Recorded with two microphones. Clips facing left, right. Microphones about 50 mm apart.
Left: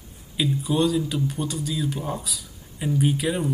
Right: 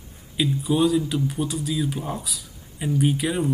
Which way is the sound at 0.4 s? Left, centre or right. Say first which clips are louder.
Right 1 dB; centre.